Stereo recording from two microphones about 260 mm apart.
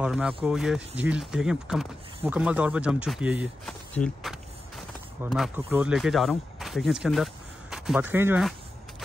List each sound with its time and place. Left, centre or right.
0.0 s speech: centre